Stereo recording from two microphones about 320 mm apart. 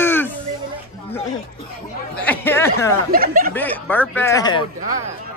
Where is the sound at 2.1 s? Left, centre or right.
Centre.